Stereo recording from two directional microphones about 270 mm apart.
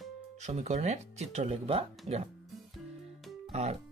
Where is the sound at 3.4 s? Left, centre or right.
Right.